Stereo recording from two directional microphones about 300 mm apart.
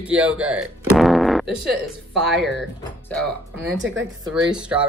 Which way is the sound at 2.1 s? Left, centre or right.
Centre.